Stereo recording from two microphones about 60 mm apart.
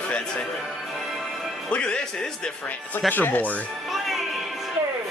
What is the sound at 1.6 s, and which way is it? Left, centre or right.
Speech, centre.